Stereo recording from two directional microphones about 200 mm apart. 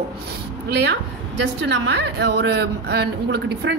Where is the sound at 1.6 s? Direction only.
60° right (ahead or behind).